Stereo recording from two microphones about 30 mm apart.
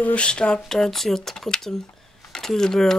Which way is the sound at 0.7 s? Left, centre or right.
Centre.